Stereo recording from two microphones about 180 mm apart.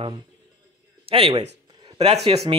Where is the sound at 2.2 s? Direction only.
35° right (ahead or behind).